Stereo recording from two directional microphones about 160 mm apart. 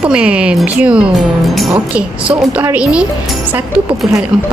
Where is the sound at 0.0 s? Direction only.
5° right (ahead or behind).